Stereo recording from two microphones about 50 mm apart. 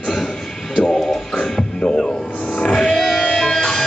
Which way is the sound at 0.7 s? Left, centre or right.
Centre.